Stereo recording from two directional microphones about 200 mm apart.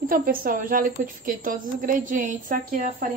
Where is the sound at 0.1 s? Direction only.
45° right (ahead or behind).